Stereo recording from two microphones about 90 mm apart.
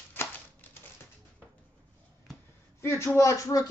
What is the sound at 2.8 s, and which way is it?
Speech, 30° left (ahead or behind).